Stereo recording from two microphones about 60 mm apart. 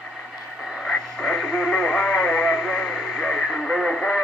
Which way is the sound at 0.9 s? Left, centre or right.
Centre.